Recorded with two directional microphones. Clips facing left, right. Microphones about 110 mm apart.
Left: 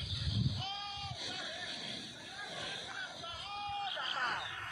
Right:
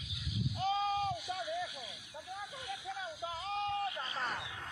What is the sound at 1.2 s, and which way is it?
Vehicle, 70° left (ahead or behind).